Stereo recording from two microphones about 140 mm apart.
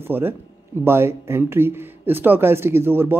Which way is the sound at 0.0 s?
15° right (ahead or behind).